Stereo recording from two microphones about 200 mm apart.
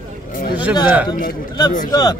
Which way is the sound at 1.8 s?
20° left (ahead or behind).